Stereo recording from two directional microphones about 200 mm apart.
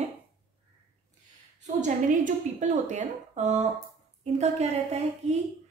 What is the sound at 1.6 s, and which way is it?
A woman's voice, 35° right (ahead or behind).